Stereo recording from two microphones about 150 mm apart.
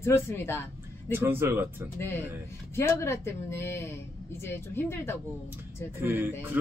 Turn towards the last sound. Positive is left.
turn(degrees=-10)  # may be behind; listen again after turning